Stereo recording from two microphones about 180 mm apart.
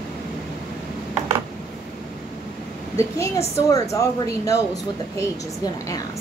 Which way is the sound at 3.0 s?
15° left (ahead or behind).